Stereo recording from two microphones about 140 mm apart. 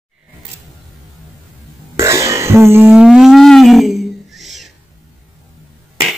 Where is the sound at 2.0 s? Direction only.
20° right (ahead or behind); by 4.7 s centre (ahead or behind).